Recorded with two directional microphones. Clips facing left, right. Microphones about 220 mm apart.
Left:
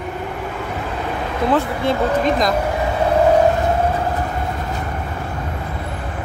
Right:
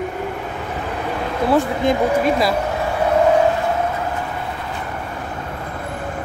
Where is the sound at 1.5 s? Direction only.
10° right (ahead or behind).